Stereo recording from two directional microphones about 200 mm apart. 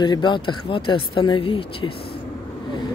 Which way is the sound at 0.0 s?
20° left (ahead or behind).